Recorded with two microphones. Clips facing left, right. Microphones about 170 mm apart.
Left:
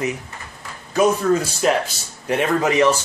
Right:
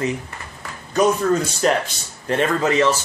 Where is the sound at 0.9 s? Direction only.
5° left (ahead or behind).